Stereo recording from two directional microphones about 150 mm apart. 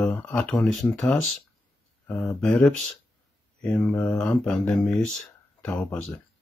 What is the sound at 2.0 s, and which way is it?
Speech, 25° left (ahead or behind).